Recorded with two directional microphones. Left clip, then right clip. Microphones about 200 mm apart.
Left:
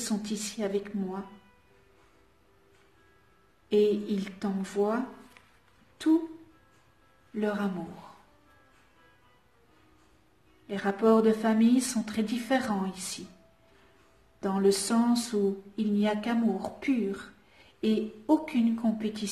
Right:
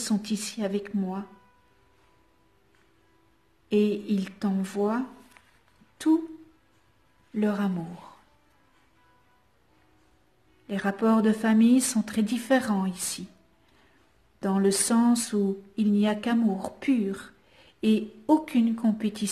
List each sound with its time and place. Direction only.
0.0 s a woman's voice: 50° right (ahead or behind)
3.6 s a woman's voice: 45° right (ahead or behind)
7.3 s a woman's voice: 50° right (ahead or behind)
10.7 s a woman's voice: 50° right (ahead or behind)
14.4 s a woman's voice: 50° right (ahead or behind)